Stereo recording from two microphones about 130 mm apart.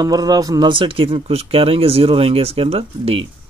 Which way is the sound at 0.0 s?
30° right (ahead or behind).